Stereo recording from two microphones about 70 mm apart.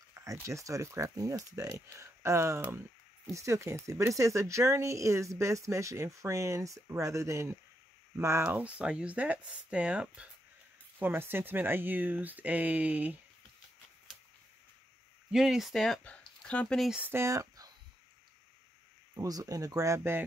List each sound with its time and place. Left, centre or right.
0.1 s speech: right
8.5 s speech: centre
11.0 s speech: right
15.3 s speech: centre
16.0 s speech: centre
17.0 s speech: right
19.2 s speech: right
20.0 s speech: right